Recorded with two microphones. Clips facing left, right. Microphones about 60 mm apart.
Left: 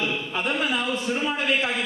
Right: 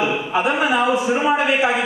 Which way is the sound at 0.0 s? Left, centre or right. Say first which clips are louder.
Right 8 dB; centre.